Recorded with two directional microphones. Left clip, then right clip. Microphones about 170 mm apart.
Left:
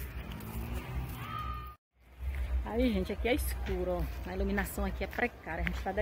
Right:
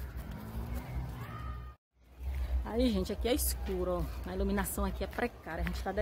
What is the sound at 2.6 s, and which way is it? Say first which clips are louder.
A woman's voice: even; 10° right (ahead or behind).